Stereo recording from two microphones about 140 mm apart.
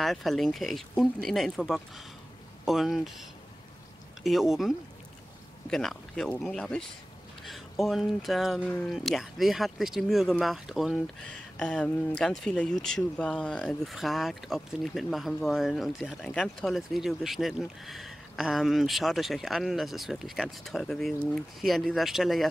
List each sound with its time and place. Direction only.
0.0 s speech: centre (ahead or behind)
4.2 s speech: centre (ahead or behind)